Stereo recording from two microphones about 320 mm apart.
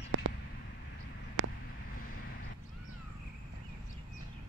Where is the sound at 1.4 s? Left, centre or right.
Right.